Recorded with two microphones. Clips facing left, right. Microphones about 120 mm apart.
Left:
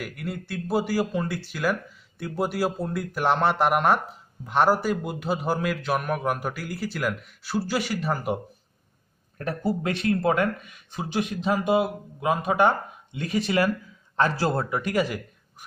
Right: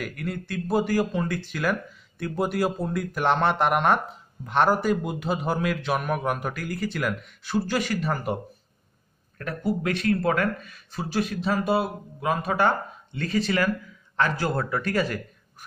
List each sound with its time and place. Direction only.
0.0 s speech: 5° left (ahead or behind)
9.4 s a man's voice: 25° left (ahead or behind)